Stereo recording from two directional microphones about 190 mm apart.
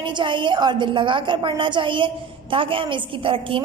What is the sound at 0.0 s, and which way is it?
A woman's voice, 25° right (ahead or behind).